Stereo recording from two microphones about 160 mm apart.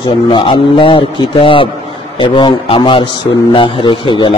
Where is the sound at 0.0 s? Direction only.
30° left (ahead or behind).